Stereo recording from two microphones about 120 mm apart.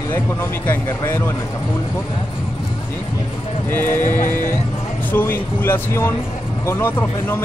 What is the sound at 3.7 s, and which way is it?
Speech, 20° left (ahead or behind).